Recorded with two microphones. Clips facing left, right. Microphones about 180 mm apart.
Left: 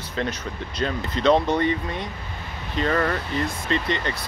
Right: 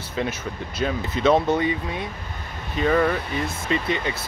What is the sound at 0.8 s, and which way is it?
Speech, 5° right (ahead or behind).